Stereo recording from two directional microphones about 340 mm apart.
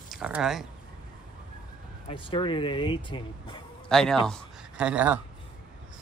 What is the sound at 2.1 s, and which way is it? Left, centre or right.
Speech, centre.